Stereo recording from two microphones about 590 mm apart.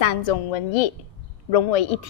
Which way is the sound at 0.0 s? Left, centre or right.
Left.